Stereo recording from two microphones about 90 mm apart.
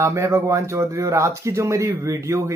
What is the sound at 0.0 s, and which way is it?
Speech, 30° right (ahead or behind).